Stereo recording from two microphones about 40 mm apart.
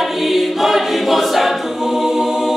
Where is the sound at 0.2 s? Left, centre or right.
Centre.